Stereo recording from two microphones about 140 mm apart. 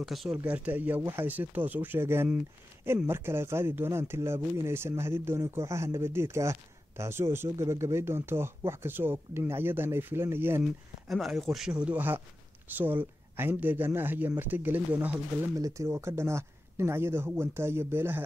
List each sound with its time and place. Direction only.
0.0 s speech: centre (ahead or behind)
0.4 s speech: 10° right (ahead or behind)
11.1 s speech: centre (ahead or behind)
15.5 s speech: 20° right (ahead or behind)